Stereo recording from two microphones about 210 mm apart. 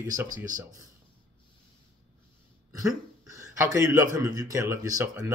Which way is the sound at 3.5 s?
15° right (ahead or behind).